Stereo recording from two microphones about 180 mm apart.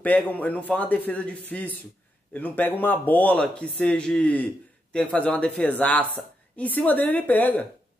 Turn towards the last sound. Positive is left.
turn(degrees=10)  # may be behind; listen again after turning